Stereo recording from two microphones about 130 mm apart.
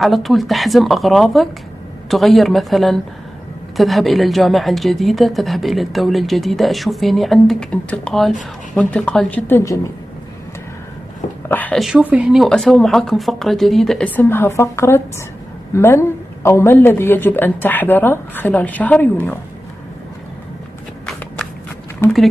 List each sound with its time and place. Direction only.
0.0 s a woman's voice: centre (ahead or behind)
9.5 s a woman's voice: 20° left (ahead or behind)
11.4 s a sound: 15° left (ahead or behind)
11.8 s a woman's voice: 10° right (ahead or behind); by 19.0 s 10° left (ahead or behind)